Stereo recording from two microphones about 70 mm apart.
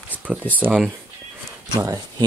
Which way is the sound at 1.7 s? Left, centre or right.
Right.